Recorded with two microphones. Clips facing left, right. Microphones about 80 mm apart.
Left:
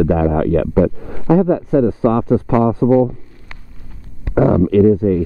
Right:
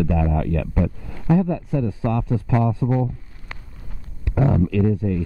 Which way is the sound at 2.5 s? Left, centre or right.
Left.